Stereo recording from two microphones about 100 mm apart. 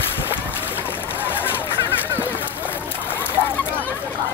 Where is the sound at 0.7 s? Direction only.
20° left (ahead or behind).